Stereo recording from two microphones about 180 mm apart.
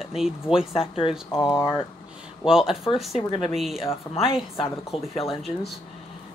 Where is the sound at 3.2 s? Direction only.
30° left (ahead or behind).